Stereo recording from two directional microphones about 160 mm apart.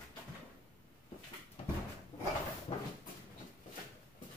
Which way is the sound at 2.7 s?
35° left (ahead or behind).